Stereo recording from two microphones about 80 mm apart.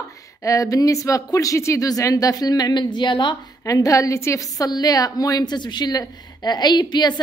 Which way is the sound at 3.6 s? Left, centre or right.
Left.